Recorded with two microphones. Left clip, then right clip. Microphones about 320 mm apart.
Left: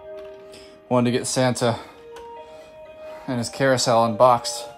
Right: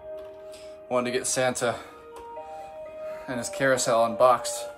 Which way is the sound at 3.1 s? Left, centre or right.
Left.